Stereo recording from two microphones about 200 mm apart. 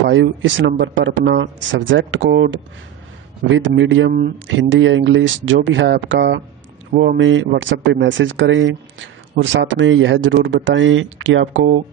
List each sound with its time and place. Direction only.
0.0 s speech: 65° right (ahead or behind)